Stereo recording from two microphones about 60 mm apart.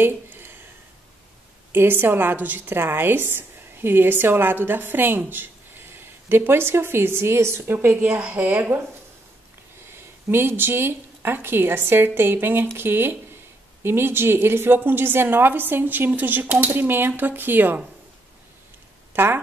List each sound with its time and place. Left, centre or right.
0.0 s a sound: right
1.7 s a woman's voice: right
9.8 s a woman's voice: right
19.1 s speech: right